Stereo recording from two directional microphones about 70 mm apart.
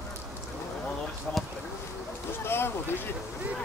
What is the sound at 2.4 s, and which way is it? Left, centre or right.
Boat, left.